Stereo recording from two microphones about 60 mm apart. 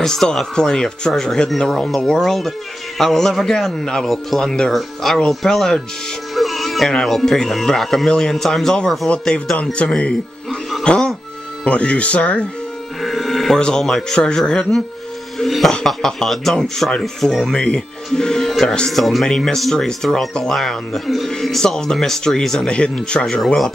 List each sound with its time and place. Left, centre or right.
0.0 s speech: centre
6.3 s music: centre
6.9 s speech: centre
10.8 s music: centre
11.6 s speech: centre
13.0 s music: centre
13.6 s speech: centre
15.3 s music: centre
15.7 s speech: centre